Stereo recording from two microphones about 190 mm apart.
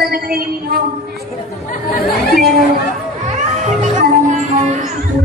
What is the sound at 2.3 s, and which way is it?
Speech, 45° right (ahead or behind).